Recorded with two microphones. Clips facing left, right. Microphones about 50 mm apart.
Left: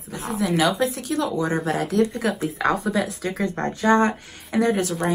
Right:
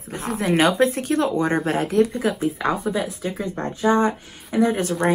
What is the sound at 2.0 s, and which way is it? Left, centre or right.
Speech, centre.